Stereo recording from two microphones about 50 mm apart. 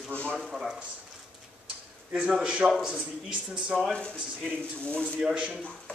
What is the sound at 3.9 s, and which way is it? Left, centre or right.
Speech, left.